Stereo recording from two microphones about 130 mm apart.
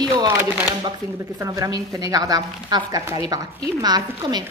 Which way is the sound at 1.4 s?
30° right (ahead or behind).